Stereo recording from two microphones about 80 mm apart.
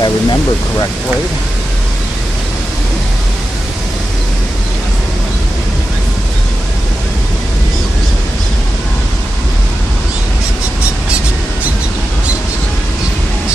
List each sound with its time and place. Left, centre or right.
0.0 s speech: left